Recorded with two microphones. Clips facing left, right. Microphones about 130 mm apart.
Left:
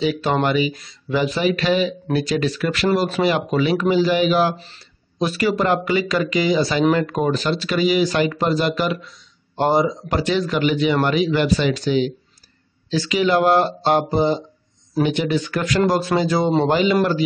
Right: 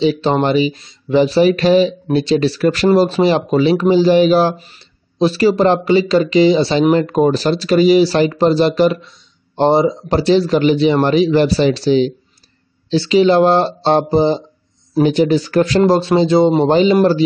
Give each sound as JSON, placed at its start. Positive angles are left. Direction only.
{"t": 0.0, "sound": "speech", "side_deg": -25}